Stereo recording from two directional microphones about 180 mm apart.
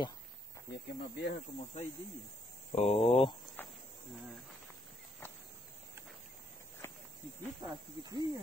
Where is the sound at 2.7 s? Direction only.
35° left (ahead or behind).